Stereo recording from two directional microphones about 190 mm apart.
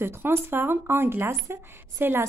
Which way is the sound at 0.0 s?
10° right (ahead or behind).